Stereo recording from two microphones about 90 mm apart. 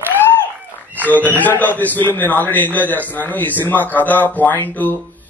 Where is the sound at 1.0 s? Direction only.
20° left (ahead or behind).